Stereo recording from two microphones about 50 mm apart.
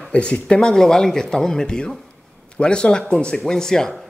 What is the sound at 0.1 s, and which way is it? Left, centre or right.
A man's voice, centre.